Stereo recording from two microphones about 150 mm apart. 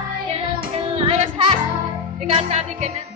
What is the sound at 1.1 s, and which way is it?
Music, 45° right (ahead or behind).